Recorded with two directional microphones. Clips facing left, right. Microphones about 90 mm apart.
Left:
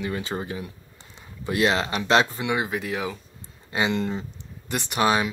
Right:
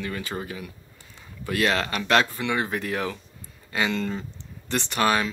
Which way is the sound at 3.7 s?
20° left (ahead or behind).